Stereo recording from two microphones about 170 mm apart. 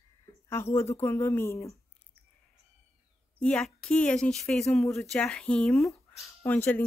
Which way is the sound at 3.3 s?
5° left (ahead or behind).